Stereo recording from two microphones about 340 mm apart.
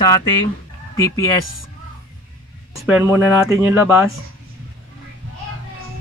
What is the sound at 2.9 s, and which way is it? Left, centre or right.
Speech, centre.